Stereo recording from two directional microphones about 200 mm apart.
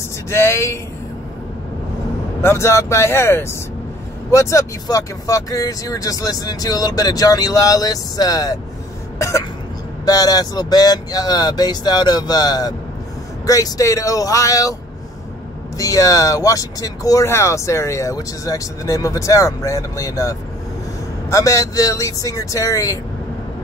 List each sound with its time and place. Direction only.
0.3 s speech: 15° left (ahead or behind)
2.4 s speech: 15° left (ahead or behind)
10.0 s speech: 20° left (ahead or behind)
15.8 s speech: 15° left (ahead or behind)